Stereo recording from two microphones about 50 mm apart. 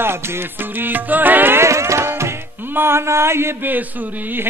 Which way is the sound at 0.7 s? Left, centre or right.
Right.